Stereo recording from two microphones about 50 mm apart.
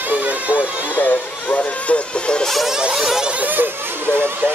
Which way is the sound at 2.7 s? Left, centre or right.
Centre.